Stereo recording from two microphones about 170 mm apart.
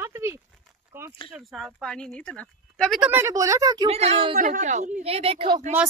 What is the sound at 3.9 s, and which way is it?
Speech, 35° right (ahead or behind).